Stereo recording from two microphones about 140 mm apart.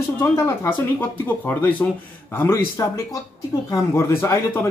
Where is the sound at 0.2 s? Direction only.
15° left (ahead or behind).